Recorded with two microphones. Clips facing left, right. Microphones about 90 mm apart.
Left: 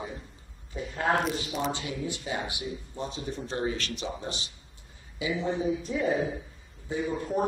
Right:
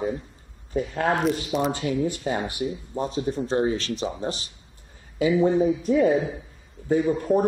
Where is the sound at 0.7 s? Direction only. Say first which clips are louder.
Right 4 dB; 45° right (ahead or behind).